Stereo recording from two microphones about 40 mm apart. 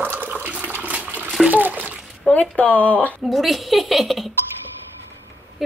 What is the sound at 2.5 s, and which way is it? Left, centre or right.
Speech, left.